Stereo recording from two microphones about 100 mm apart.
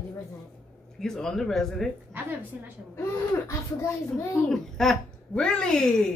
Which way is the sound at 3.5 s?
30° left (ahead or behind).